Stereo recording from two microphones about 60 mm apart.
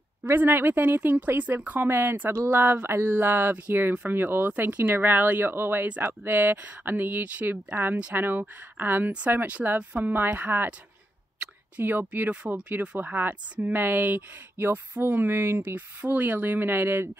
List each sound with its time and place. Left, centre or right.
0.2 s speech: right
5.9 s speech: right
10.1 s speech: right
11.8 s speech: right